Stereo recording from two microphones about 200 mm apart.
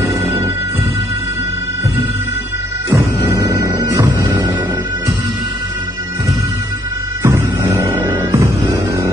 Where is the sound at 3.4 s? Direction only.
60° left (ahead or behind).